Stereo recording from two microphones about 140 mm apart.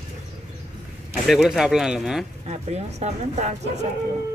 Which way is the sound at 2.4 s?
50° right (ahead or behind).